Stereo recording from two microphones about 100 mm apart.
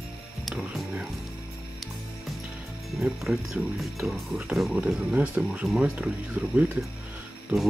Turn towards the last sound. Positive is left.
turn(degrees=-15)  # may be behind; listen again after turning